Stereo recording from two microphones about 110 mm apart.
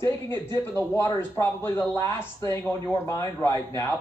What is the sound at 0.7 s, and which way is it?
Speech, 20° left (ahead or behind).